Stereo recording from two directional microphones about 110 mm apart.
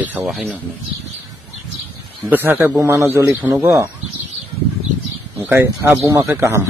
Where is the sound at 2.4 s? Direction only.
15° right (ahead or behind).